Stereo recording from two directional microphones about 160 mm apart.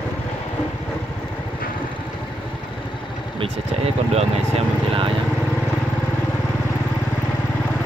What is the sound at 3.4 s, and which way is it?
Speech, 40° right (ahead or behind).